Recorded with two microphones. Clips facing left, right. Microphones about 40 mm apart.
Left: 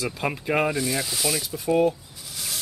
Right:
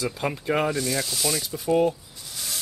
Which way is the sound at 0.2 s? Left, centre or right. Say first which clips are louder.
Left 1 dB; centre.